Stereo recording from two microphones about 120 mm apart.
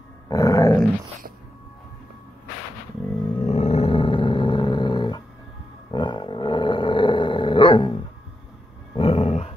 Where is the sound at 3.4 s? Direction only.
60° left (ahead or behind); by 5.2 s 40° left (ahead or behind).